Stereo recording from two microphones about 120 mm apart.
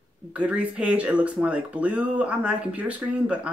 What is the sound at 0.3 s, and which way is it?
Speech, 10° right (ahead or behind).